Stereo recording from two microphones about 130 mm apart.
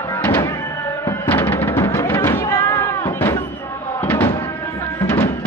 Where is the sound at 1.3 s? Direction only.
15° left (ahead or behind).